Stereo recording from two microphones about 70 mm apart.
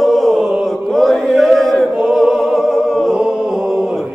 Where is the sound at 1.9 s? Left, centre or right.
Centre.